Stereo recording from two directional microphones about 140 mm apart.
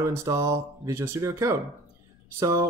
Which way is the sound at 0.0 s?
20° right (ahead or behind).